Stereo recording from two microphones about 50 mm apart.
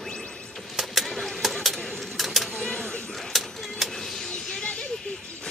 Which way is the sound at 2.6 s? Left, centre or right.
Centre.